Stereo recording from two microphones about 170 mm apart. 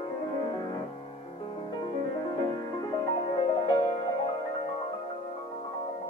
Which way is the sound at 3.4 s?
30° left (ahead or behind).